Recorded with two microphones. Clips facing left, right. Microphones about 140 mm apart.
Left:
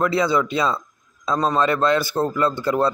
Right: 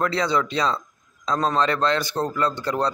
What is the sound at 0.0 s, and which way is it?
A man's voice, 5° left (ahead or behind).